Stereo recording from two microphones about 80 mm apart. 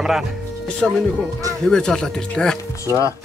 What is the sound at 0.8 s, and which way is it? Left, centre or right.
Speech, centre.